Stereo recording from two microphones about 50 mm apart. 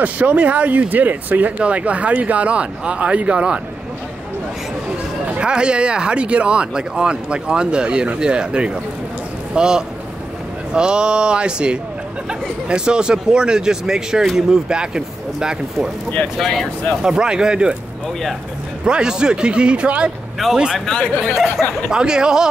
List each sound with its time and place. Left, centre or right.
0.0 s speech: right
5.4 s speech: centre
16.3 s speech: centre
17.0 s speech: centre
18.9 s speech: centre
20.4 s speech: centre
20.8 s speech: centre
21.9 s speech: centre